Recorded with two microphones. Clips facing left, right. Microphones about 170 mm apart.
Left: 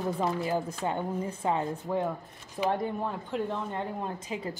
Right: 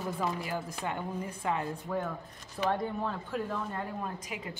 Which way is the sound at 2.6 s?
15° left (ahead or behind).